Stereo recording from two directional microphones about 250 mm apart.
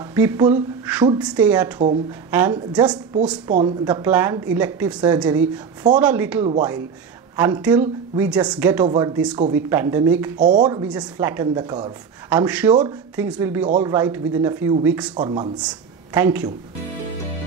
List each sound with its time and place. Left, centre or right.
0.1 s a sound: centre
1.2 s a woman's voice: centre
2.5 s a woman's voice: centre
6.4 s speech: centre
12.3 s speech: centre